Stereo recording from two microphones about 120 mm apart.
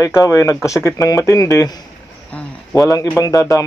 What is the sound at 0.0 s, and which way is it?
Speech, 30° left (ahead or behind).